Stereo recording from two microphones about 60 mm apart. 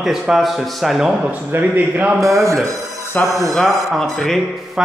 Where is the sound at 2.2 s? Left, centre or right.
Right.